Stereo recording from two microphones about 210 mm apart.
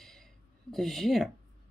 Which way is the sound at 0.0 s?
Centre (ahead or behind).